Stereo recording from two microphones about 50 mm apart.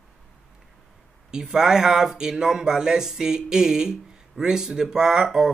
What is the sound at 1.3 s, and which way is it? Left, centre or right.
Speech, centre.